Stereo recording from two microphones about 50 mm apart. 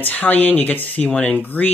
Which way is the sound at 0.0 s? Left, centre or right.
Left.